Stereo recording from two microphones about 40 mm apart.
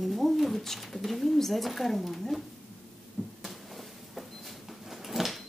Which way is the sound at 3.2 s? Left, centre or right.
Left.